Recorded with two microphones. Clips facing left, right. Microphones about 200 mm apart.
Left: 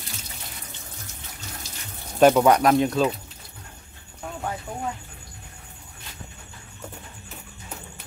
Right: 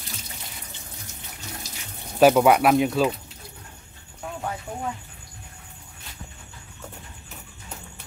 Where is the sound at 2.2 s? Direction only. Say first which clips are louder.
Even; 5° right (ahead or behind).